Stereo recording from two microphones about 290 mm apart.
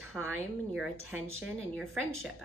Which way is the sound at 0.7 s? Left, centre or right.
Centre.